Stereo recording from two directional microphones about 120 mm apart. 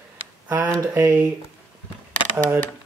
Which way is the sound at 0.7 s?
30° right (ahead or behind).